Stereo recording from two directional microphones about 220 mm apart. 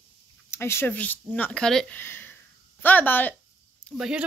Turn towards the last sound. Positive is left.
turn(degrees=-5)  # may be behind; listen again after turning